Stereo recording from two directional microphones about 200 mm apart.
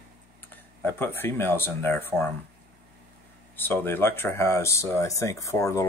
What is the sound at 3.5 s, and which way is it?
Speech, 10° left (ahead or behind).